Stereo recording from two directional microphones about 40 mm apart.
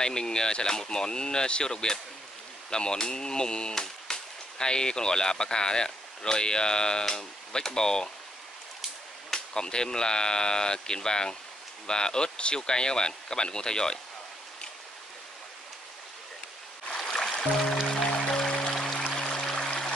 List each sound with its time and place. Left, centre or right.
0.0 s speech: centre
9.3 s speech: centre
16.8 s boat: left
17.1 s music: centre
18.9 s pour: left